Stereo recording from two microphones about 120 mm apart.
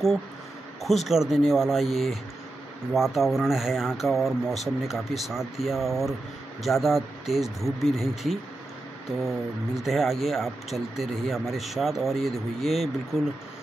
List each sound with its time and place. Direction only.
0.8 s speech: centre (ahead or behind)